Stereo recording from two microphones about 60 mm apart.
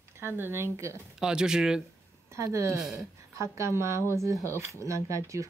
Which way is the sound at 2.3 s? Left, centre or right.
Right.